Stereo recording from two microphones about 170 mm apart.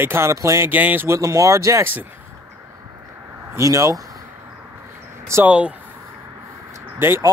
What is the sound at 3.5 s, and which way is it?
Speech, 20° right (ahead or behind).